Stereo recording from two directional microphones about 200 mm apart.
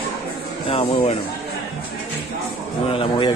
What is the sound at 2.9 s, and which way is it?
Speech, 25° left (ahead or behind).